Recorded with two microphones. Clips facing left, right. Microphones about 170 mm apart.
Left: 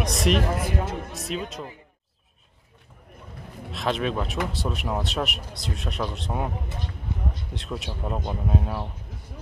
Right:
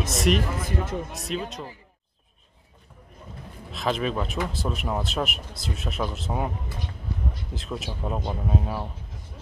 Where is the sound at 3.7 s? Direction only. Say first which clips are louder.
Even; centre (ahead or behind).